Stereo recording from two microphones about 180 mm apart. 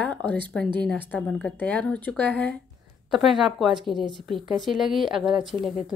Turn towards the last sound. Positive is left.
turn(degrees=0)  # may be behind; listen again after turning